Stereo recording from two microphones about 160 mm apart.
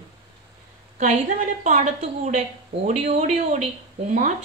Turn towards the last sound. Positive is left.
turn(degrees=-50)  # may be behind; listen again after turning